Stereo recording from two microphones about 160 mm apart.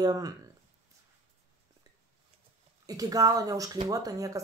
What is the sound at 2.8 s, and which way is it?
Speech, 20° right (ahead or behind).